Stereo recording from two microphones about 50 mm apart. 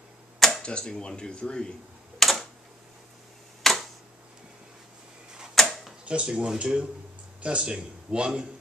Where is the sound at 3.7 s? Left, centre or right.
Centre.